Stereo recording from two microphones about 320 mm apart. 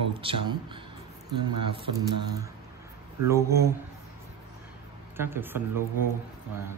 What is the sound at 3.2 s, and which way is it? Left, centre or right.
Speech, centre.